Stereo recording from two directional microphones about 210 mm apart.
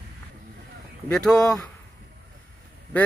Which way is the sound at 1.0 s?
5° left (ahead or behind).